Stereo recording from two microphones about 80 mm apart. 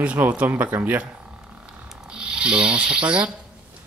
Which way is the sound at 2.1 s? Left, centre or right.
Centre.